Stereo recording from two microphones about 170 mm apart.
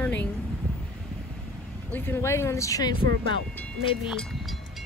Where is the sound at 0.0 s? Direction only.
10° left (ahead or behind).